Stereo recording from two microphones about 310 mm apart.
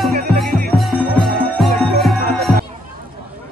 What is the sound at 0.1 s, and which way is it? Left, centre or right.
Music, right.